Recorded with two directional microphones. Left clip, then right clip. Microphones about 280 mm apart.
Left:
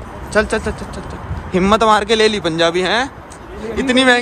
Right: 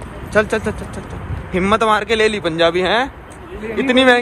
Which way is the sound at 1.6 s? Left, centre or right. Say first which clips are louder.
Left 2 dB; centre.